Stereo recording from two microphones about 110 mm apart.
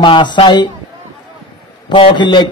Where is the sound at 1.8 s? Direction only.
50° left (ahead or behind).